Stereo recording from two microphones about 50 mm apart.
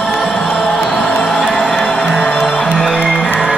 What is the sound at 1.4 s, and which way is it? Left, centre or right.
Music, centre.